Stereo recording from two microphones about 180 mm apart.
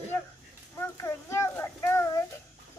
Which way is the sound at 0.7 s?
15° left (ahead or behind).